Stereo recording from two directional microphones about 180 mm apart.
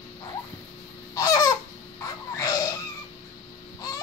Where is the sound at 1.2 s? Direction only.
20° left (ahead or behind).